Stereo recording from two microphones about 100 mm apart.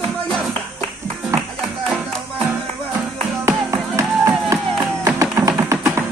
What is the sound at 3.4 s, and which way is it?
Music, 30° right (ahead or behind).